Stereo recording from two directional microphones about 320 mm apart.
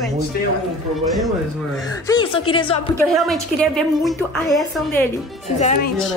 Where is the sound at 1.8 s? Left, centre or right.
Centre.